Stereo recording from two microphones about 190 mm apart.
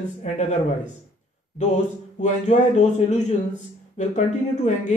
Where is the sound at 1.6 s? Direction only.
40° left (ahead or behind).